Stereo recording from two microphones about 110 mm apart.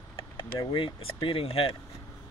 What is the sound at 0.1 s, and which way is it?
Speech, 45° left (ahead or behind).